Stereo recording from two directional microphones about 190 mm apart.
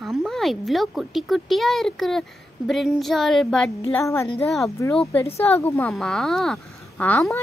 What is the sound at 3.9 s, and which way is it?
Speech, 15° left (ahead or behind).